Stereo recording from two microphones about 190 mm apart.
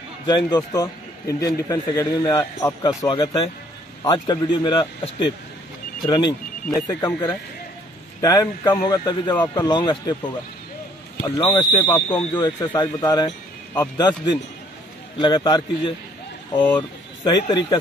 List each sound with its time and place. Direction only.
0.3 s a man's voice: 20° left (ahead or behind)
16.5 s speech: 10° left (ahead or behind)
17.3 s a man's voice: 25° left (ahead or behind)